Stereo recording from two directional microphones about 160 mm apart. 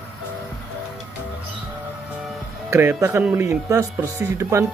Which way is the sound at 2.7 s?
15° right (ahead or behind).